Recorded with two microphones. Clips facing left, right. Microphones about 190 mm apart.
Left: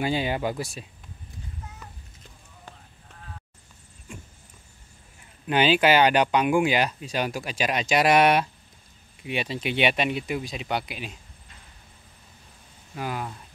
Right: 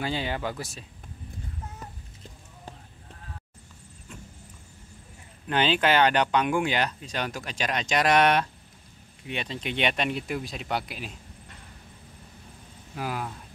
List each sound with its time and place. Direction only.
0.0 s speech: 15° left (ahead or behind)
4.1 s vehicle: 10° left (ahead or behind)
5.5 s speech: 10° left (ahead or behind)
12.9 s speech: centre (ahead or behind)